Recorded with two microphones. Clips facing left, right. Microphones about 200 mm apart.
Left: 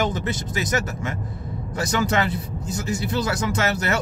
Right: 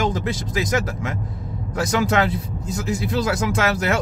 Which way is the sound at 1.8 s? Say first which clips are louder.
Right 3 dB; 90° right.